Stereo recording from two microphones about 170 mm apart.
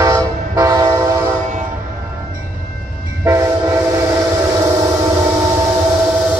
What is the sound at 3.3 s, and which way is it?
Train, 15° right (ahead or behind).